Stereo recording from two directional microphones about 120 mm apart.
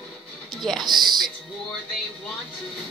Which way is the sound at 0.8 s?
35° right (ahead or behind).